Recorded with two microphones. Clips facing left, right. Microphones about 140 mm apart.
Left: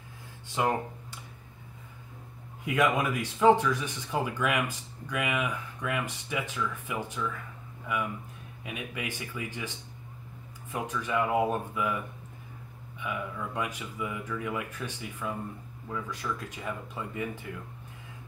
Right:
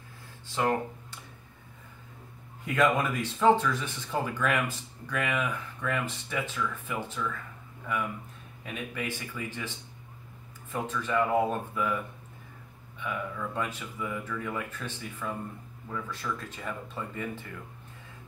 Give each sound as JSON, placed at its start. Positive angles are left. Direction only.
{"t": 0.6, "sound": "speech", "side_deg": 15}
{"t": 2.6, "sound": "speech", "side_deg": 15}
{"t": 13.0, "sound": "speech", "side_deg": 15}